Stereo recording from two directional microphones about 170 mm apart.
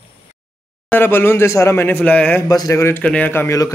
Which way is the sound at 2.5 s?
20° left (ahead or behind).